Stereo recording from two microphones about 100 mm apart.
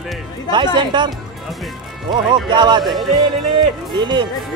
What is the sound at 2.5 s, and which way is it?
Speech, 50° right (ahead or behind).